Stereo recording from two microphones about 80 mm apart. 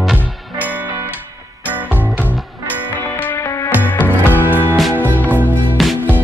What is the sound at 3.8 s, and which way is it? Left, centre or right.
Music, left.